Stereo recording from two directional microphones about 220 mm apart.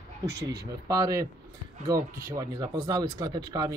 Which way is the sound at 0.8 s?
15° right (ahead or behind).